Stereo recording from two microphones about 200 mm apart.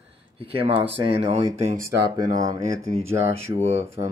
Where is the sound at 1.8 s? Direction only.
15° right (ahead or behind).